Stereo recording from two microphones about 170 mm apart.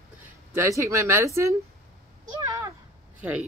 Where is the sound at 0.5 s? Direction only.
15° right (ahead or behind).